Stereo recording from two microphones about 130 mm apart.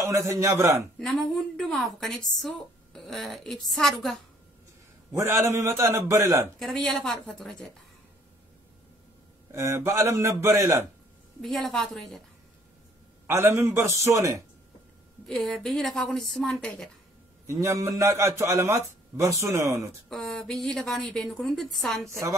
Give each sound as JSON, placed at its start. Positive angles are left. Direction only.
{"t": 0.1, "sound": "a man's voice", "side_deg": -25}
{"t": 0.9, "sound": "a woman's voice", "side_deg": 5}
{"t": 5.1, "sound": "a man's voice", "side_deg": -25}
{"t": 6.6, "sound": "a woman's voice", "side_deg": 5}
{"t": 9.5, "sound": "a man's voice", "side_deg": -20}
{"t": 11.4, "sound": "a woman's voice", "side_deg": 5}
{"t": 13.3, "sound": "a man's voice", "side_deg": -20}
{"t": 15.2, "sound": "a woman's voice", "side_deg": 5}
{"t": 17.5, "sound": "a man's voice", "side_deg": -20}
{"t": 20.1, "sound": "a woman's voice", "side_deg": 0}